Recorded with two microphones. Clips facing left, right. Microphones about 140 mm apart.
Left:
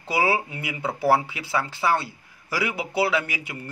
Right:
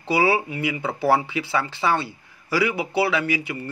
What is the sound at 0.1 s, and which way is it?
A man's voice, 15° left (ahead or behind).